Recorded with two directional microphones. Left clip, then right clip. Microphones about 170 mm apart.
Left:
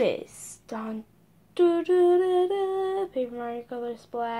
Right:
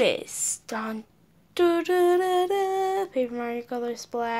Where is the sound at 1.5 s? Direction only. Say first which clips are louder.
Even; 5° right (ahead or behind).